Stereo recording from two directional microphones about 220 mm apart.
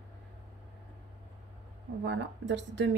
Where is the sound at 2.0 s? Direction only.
55° right (ahead or behind).